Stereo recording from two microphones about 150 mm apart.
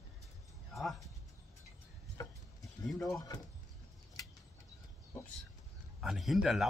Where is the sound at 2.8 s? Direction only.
Centre (ahead or behind).